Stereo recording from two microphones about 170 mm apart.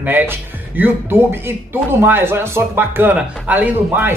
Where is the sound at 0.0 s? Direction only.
10° right (ahead or behind).